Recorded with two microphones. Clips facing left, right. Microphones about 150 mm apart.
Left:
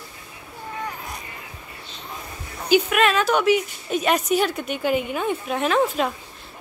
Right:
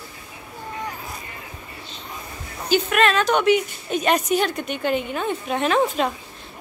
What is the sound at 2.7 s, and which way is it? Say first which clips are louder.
A woman's voice: left 1 dB; 5° left (ahead or behind).